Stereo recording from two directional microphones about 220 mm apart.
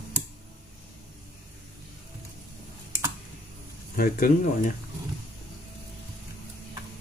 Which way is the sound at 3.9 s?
40° left (ahead or behind).